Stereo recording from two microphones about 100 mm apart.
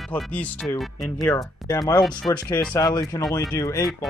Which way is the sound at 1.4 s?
35° left (ahead or behind).